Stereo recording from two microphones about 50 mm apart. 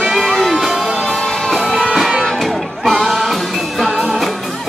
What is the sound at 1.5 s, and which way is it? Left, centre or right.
Music, centre.